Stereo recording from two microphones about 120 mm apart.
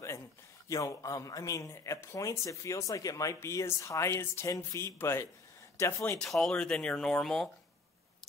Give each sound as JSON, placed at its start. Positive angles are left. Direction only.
{"t": 0.7, "sound": "speech", "side_deg": 30}
{"t": 6.1, "sound": "speech", "side_deg": 0}